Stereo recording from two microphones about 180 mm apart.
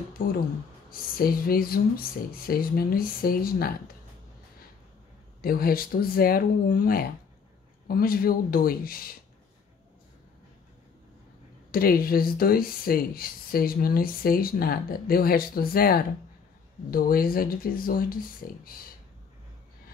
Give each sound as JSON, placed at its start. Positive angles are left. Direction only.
{"t": 0.2, "sound": "speech", "side_deg": 50}
{"t": 5.4, "sound": "speech", "side_deg": 55}
{"t": 11.7, "sound": "speech", "side_deg": 55}